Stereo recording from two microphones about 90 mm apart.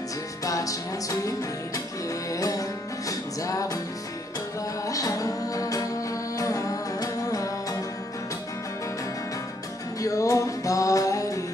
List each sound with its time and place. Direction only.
0.5 s music: 40° left (ahead or behind)
2.3 s music: 40° left (ahead or behind)
4.8 s music: 40° left (ahead or behind)
10.0 s music: 40° left (ahead or behind)